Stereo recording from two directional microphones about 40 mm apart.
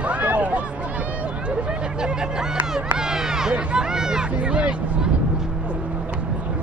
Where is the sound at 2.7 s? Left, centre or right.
Centre.